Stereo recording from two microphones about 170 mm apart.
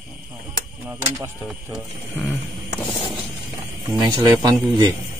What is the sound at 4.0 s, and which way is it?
Speech, 25° right (ahead or behind).